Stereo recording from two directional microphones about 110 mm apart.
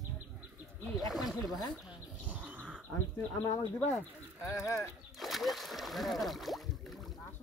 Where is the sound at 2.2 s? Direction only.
15° right (ahead or behind).